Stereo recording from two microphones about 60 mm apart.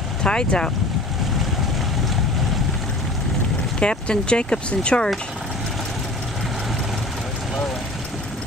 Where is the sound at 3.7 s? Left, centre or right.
Centre.